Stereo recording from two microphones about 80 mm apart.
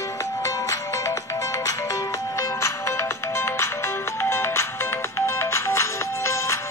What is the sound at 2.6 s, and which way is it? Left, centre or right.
Music, left.